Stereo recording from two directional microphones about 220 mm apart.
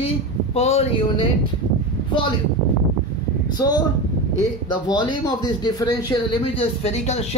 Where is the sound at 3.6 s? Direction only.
20° left (ahead or behind).